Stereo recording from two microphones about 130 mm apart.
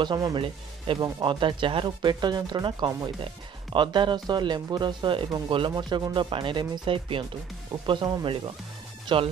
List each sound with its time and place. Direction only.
0.0 s speech: 30° right (ahead or behind)